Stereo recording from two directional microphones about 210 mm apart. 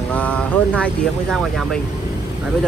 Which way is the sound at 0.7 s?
5° left (ahead or behind).